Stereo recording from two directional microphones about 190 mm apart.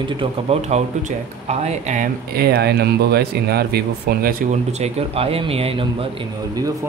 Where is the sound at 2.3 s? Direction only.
55° right (ahead or behind); by 6.0 s 30° right (ahead or behind).